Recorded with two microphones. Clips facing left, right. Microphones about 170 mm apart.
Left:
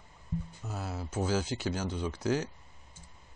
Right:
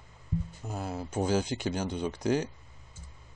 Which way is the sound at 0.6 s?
15° right (ahead or behind).